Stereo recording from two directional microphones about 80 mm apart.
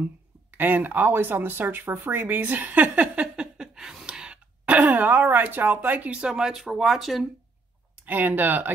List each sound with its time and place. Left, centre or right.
0.0 s speech: right; by 7.2 s centre
8.0 s speech: right